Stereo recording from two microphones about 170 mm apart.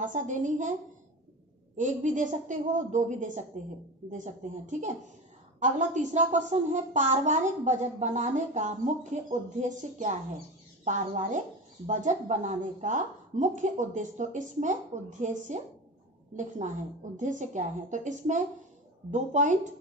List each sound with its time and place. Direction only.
0.0 s speech: 45° right (ahead or behind)
1.8 s speech: 45° right (ahead or behind)